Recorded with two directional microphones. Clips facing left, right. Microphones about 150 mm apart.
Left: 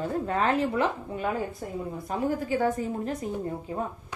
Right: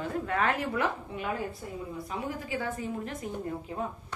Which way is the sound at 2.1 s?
40° left (ahead or behind).